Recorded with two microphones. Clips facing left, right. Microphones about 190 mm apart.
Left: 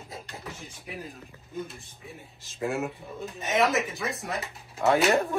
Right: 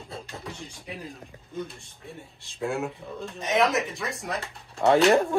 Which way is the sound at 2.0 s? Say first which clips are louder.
Right 4 dB; centre (ahead or behind).